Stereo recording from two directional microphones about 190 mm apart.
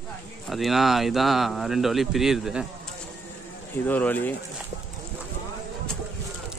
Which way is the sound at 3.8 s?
10° left (ahead or behind).